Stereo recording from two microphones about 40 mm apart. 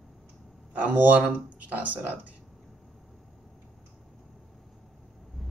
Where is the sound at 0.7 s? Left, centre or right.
Right.